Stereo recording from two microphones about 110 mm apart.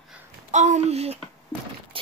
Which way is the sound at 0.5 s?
90° right.